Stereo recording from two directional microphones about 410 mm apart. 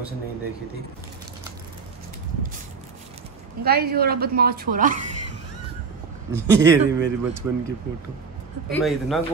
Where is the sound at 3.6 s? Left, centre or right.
Right.